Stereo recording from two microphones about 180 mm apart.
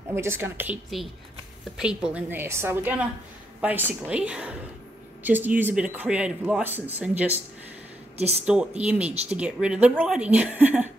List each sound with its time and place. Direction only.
0.1 s speech: 15° right (ahead or behind)
8.2 s speech: 35° right (ahead or behind)
8.5 s speech: 5° right (ahead or behind)